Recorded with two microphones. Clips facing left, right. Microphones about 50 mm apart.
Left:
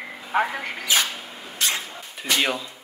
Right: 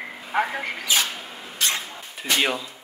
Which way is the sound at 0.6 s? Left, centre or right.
Left.